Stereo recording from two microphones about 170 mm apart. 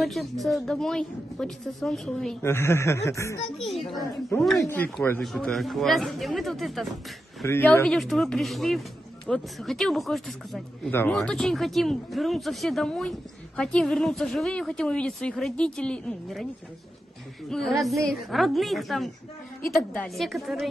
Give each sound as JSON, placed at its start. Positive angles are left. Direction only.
{"t": 0.0, "sound": "speech", "side_deg": 0}
{"t": 2.4, "sound": "speech", "side_deg": 15}
{"t": 3.5, "sound": "a child's voice", "side_deg": 0}
{"t": 4.6, "sound": "speech", "side_deg": 10}
{"t": 5.2, "sound": "speech", "side_deg": 0}
{"t": 7.4, "sound": "speech", "side_deg": 15}
{"t": 10.9, "sound": "speech", "side_deg": 10}
{"t": 11.1, "sound": "speech", "side_deg": 0}
{"t": 17.5, "sound": "speech", "side_deg": 0}